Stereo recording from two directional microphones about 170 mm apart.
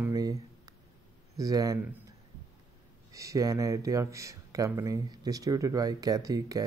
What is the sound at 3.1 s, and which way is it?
Speech, 20° right (ahead or behind).